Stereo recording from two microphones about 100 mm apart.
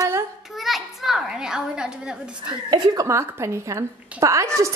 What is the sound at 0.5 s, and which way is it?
A child's voice, centre (ahead or behind).